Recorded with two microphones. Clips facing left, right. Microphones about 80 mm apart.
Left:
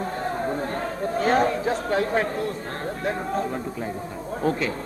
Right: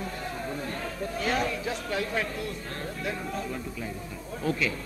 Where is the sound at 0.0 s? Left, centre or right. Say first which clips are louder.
Left 8 dB; left.